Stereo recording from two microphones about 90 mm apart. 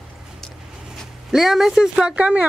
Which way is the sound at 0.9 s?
5° right (ahead or behind).